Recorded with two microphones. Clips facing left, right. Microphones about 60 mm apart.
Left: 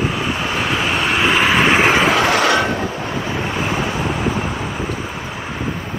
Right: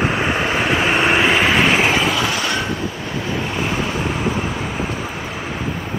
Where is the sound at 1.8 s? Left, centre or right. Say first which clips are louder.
Left 4 dB; left.